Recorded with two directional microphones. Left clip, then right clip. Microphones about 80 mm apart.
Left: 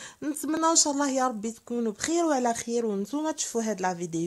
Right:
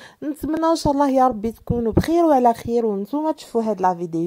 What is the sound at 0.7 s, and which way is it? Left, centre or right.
Speech, right.